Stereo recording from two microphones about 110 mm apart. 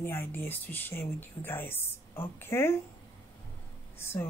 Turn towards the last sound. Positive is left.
turn(degrees=20)  # may be behind; listen again after turning